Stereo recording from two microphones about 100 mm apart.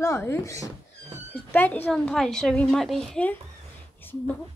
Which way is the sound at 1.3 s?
20° left (ahead or behind).